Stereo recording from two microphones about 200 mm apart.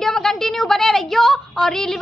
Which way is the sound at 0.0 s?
Centre (ahead or behind).